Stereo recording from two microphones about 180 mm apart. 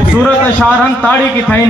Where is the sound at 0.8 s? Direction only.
10° left (ahead or behind).